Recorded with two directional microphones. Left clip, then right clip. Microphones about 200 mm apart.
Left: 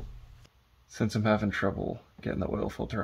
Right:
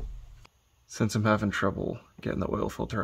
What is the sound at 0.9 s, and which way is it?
Speech, 55° right (ahead or behind).